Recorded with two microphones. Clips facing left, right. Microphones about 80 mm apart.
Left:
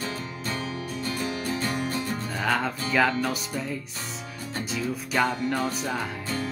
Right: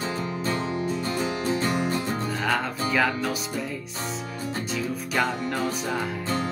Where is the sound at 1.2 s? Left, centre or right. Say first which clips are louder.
Right 3 dB; right.